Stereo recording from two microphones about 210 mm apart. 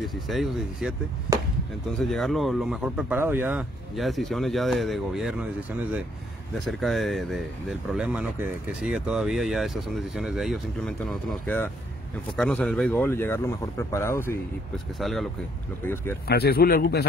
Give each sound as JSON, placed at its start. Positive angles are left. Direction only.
{"t": 0.0, "sound": "speech", "side_deg": 0}
{"t": 1.3, "sound": "speech", "side_deg": -15}
{"t": 1.9, "sound": "speech", "side_deg": 0}
{"t": 6.6, "sound": "speech", "side_deg": 0}
{"t": 15.0, "sound": "speech", "side_deg": 0}
{"t": 16.3, "sound": "speech", "side_deg": 50}